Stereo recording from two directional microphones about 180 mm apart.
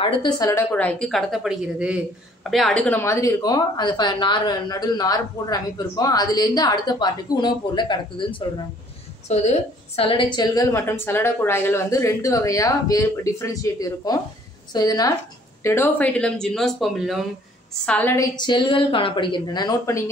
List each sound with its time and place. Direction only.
0.0 s a woman's voice: 25° left (ahead or behind)
9.3 s speech: 40° left (ahead or behind); by 20.1 s 20° left (ahead or behind)